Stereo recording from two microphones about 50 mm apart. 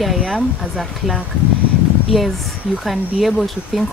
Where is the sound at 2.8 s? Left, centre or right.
Centre.